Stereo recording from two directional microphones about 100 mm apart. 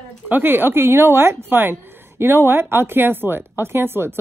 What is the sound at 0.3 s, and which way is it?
A woman's voice, 20° right (ahead or behind).